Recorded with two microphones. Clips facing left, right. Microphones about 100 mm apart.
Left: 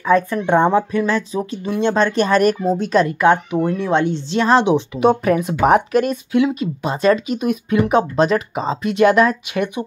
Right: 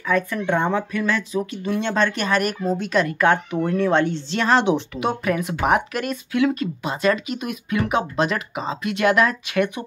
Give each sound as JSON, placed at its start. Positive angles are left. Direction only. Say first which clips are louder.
{"t": 0.0, "sound": "speech", "louder": "left 6 dB", "side_deg": 30}